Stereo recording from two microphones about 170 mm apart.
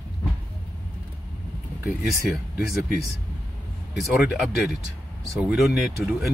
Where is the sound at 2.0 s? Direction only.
Centre (ahead or behind).